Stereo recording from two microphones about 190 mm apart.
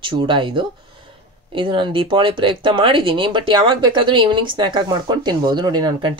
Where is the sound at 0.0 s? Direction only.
25° right (ahead or behind).